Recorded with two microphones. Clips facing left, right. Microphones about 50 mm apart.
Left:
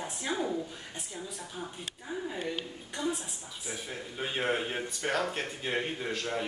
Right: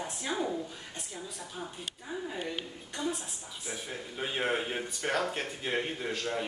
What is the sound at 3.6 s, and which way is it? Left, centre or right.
Speech, centre.